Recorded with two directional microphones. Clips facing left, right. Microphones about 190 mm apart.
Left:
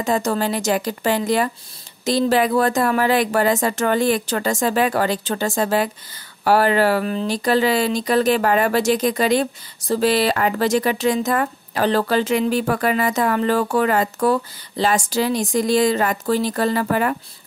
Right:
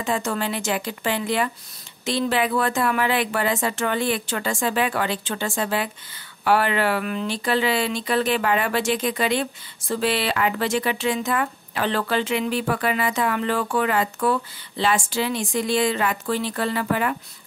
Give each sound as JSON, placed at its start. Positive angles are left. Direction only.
{"t": 0.0, "sound": "speech", "side_deg": 40}